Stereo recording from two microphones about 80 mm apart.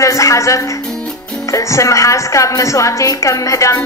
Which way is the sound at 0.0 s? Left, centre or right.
Left.